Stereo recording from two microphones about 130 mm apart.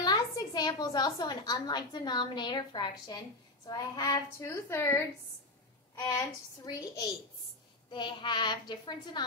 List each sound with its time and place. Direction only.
0.0 s a woman's voice: 30° left (ahead or behind)
6.1 s a woman's voice: 25° left (ahead or behind)